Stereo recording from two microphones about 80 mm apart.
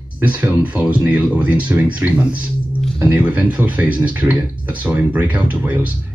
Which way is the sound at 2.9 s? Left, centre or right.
Right.